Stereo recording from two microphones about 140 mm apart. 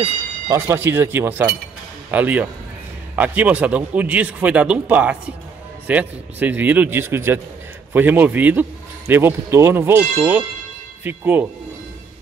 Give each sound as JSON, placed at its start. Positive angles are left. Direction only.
{"t": 0.5, "sound": "a man's voice", "side_deg": -20}